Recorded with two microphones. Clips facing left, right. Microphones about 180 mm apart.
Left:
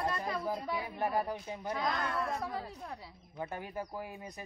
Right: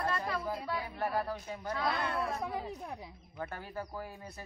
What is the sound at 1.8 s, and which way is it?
Speech, 5° right (ahead or behind).